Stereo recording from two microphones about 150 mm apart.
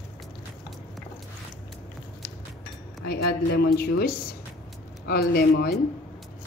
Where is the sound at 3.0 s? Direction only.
90° left.